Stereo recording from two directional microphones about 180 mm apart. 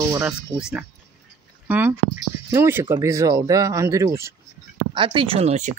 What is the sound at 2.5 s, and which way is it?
Speech, 15° right (ahead or behind).